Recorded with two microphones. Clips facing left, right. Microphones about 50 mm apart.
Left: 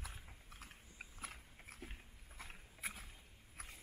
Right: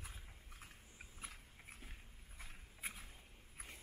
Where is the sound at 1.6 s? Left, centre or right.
Left.